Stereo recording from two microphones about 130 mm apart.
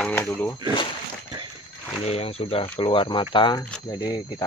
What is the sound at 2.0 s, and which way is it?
Speech, 50° left (ahead or behind).